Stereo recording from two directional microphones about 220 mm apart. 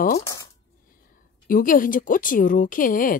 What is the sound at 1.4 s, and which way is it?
Speech, 40° left (ahead or behind).